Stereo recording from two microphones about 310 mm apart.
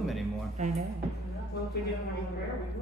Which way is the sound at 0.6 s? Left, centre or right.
Centre.